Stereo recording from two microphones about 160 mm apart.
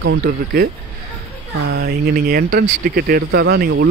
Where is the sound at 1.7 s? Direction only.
80° right.